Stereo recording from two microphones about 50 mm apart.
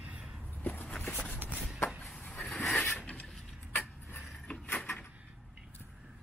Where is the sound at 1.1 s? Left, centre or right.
Centre.